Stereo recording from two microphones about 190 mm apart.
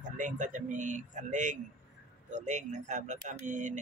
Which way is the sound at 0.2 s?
40° right (ahead or behind).